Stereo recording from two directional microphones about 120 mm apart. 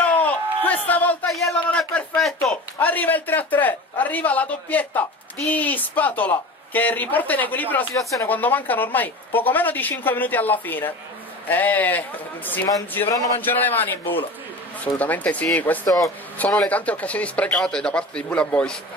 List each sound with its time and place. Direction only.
0.0 s a sound: 15° left (ahead or behind)
1.3 s speech: centre (ahead or behind)
2.8 s speech: 15° left (ahead or behind)
7.9 s speech: 25° left (ahead or behind)
8.3 s speech: 15° left (ahead or behind)
13.4 s speech: 15° left (ahead or behind)